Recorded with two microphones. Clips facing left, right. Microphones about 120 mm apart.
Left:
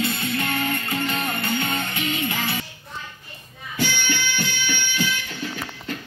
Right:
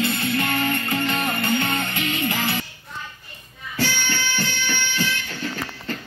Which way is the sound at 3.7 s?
40° right (ahead or behind).